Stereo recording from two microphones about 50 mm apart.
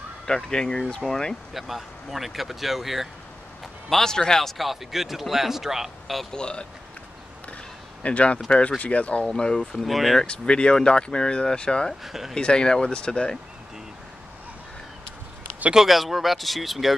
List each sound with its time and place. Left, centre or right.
0.3 s speech: centre
1.5 s speech: centre
3.9 s speech: centre
6.3 s speech: centre
8.0 s speech: left
9.3 s speech: centre
9.8 s speech: centre
10.2 s speech: centre
12.0 s speech: centre
12.4 s speech: centre
15.7 s speech: centre